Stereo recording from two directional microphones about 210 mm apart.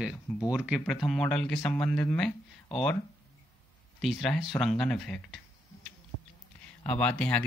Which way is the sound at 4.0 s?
Centre (ahead or behind).